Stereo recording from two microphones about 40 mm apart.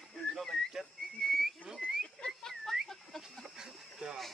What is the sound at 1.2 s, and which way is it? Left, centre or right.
Whistle, centre.